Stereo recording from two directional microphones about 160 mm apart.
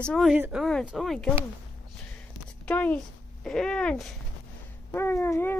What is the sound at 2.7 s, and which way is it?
A child's voice, 10° left (ahead or behind).